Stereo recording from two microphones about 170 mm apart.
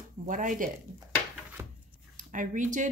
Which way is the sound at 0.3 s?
50° right (ahead or behind).